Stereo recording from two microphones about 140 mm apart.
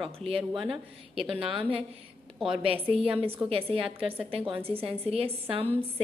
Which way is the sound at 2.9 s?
40° right (ahead or behind).